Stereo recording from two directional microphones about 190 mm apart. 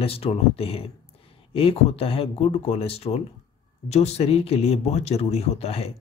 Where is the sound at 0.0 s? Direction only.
30° left (ahead or behind).